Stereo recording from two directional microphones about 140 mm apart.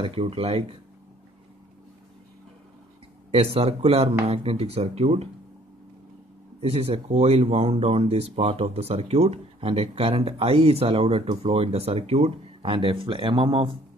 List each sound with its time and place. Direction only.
0.0 s speech: 40° right (ahead or behind)
3.3 s speech: 45° right (ahead or behind)
6.6 s speech: 45° right (ahead or behind)